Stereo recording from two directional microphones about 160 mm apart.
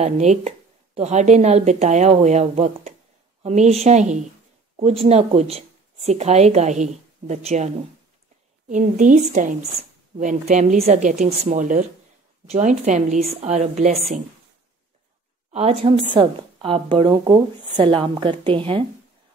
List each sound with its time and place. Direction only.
0.0 s speech: 45° right (ahead or behind)
15.5 s a woman's voice: 40° right (ahead or behind)